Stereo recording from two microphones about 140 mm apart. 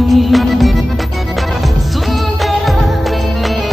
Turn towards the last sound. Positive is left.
turn(degrees=0)  # may be behind; listen again after turning